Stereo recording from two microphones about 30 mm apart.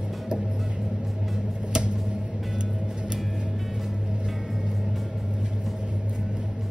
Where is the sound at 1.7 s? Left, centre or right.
Right.